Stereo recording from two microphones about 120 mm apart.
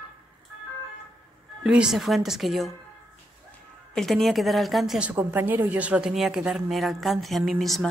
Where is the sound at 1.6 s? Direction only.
5° right (ahead or behind).